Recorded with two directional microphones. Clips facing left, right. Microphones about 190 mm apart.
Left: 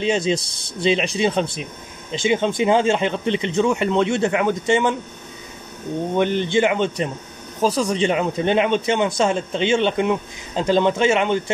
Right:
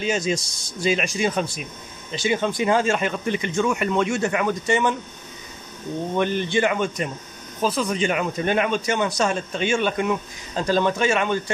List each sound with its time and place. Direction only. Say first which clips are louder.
0.0 s speech: left 4 dB; 30° left (ahead or behind)
0.4 s speech: left 3 dB; 60° left (ahead or behind)
0.8 s speech: left 3 dB; 25° left (ahead or behind)
6.1 s speech: left 3 dB; 20° left (ahead or behind)
7.6 s speech: left 3 dB; 35° left (ahead or behind); by 11.5 s 20° left (ahead or behind)